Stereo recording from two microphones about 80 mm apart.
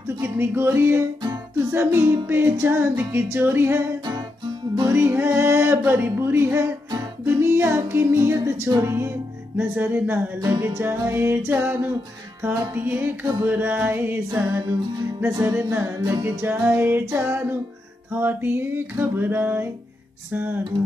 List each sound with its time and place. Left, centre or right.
0.2 s music: right
4.8 s music: right
5.9 s speech: right
7.2 s music: right
16.0 s music: right
16.3 s music: right